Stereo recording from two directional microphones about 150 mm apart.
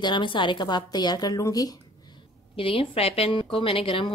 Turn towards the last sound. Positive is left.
turn(degrees=35)  # may be behind; listen again after turning